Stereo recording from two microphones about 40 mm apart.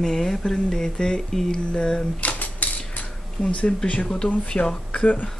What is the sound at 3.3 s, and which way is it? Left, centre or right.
Speech, left.